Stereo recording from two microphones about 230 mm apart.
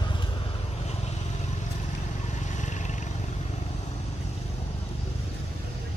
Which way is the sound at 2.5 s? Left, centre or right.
Left.